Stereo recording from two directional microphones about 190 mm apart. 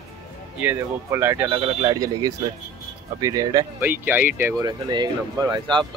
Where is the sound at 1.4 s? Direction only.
30° right (ahead or behind).